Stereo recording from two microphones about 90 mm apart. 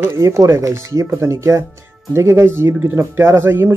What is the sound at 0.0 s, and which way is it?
Speech, 35° right (ahead or behind).